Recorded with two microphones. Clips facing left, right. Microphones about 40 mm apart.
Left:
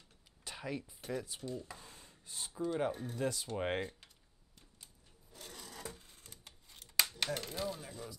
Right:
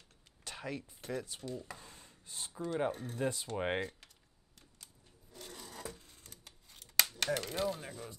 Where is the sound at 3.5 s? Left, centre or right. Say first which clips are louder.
Right 1 dB; centre.